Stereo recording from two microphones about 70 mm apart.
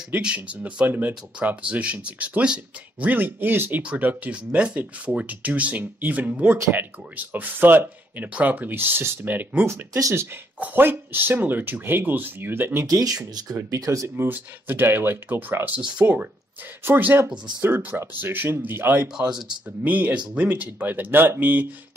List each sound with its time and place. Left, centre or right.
0.2 s speech: centre
12.9 s speech: right
14.0 s speech: right
16.0 s speech: right